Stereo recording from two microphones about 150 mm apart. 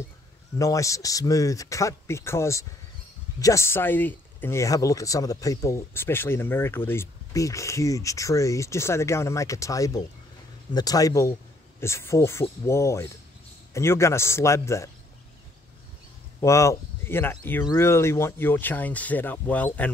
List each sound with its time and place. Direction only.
0.6 s speech: 20° left (ahead or behind)
16.3 s speech: 20° left (ahead or behind)